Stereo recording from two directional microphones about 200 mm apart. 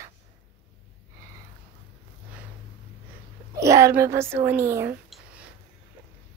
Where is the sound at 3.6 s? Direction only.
15° right (ahead or behind).